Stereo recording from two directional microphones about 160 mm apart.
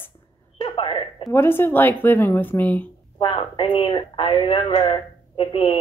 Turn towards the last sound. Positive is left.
turn(degrees=35)  # may be behind; listen again after turning